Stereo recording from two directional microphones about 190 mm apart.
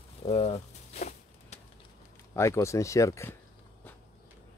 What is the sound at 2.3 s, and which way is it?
Speech, 15° left (ahead or behind).